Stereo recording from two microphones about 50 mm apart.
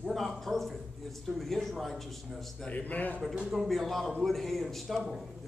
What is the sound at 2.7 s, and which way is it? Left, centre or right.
Speech, left.